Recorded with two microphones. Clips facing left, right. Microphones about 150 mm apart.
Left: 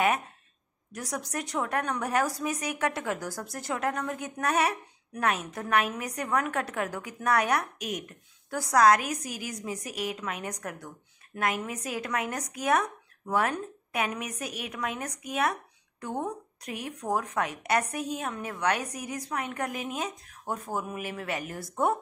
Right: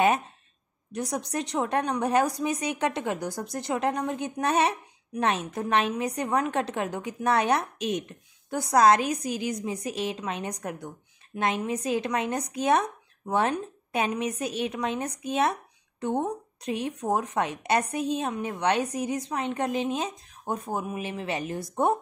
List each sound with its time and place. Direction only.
0.9 s a woman's voice: 20° right (ahead or behind)